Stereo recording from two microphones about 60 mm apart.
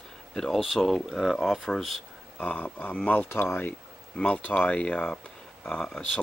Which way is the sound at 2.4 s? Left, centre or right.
Left.